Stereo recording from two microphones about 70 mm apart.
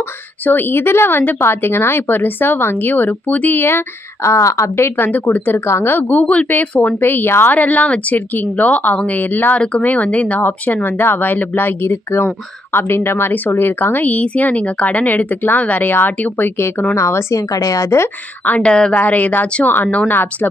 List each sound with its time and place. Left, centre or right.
0.5 s speech: left
5.7 s speech: left
5.9 s a woman's voice: left
7.0 s speech: left
7.5 s a woman's voice: left
16.9 s speech: left
18.4 s a woman's voice: centre